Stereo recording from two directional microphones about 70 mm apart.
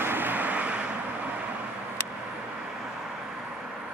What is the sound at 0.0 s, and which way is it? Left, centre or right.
Vehicle, right.